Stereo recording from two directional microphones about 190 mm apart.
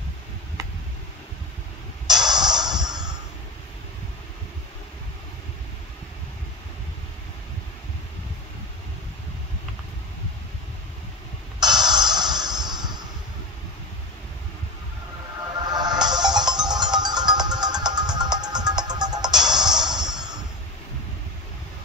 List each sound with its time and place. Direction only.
2.0 s music: 20° right (ahead or behind)
11.6 s music: 20° right (ahead or behind)
15.7 s music: 20° right (ahead or behind)